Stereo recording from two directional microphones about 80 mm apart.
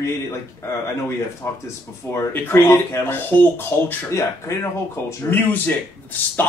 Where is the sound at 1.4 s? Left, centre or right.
Left.